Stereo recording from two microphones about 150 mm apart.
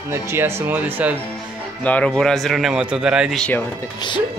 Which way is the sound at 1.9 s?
10° left (ahead or behind).